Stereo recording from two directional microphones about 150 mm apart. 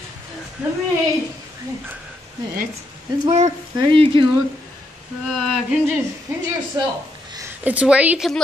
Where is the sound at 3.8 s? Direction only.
35° right (ahead or behind).